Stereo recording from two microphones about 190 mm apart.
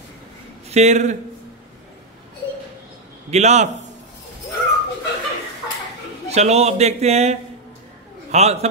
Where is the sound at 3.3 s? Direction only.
35° right (ahead or behind).